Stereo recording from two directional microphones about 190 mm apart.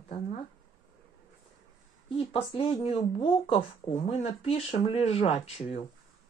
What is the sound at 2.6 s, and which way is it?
Speech, 30° left (ahead or behind).